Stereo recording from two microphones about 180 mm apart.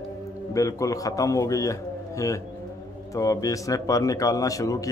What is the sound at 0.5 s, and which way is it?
A man's voice, 20° left (ahead or behind).